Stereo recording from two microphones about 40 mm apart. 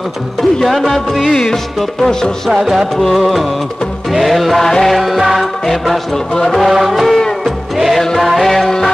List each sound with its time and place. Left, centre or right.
0.4 s music: centre
1.3 s music: centre
2.5 s music: centre
3.0 s music: centre
4.6 s music: centre
4.9 s music: centre